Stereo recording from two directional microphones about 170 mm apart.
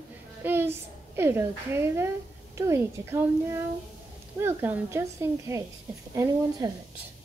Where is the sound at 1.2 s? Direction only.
15° right (ahead or behind).